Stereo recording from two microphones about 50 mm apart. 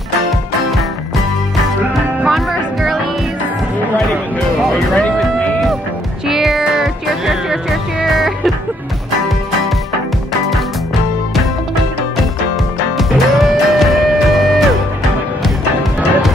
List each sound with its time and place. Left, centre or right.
2.2 s music: centre
5.0 s music: left
6.2 s music: centre
12.9 s music: centre